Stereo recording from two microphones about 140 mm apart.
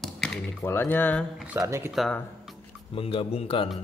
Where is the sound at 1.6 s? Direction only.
20° right (ahead or behind).